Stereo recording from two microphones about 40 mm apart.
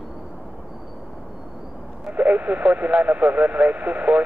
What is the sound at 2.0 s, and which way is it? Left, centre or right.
Speech, right.